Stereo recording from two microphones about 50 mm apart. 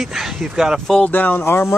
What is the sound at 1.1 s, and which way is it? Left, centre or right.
Speech, left.